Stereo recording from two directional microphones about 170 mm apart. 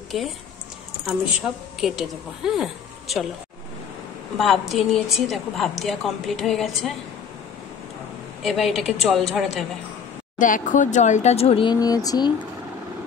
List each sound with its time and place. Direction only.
0.1 s a woman's voice: centre (ahead or behind)
1.8 s a woman's voice: centre (ahead or behind)
4.4 s a woman's voice: centre (ahead or behind)
8.4 s a woman's voice: centre (ahead or behind)
10.4 s speech: 50° left (ahead or behind); by 12.3 s 20° left (ahead or behind)